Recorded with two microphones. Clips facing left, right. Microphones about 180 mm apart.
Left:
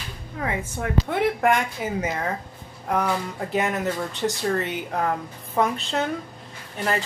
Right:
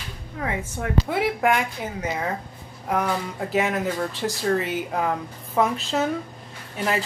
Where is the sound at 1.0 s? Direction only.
Centre (ahead or behind).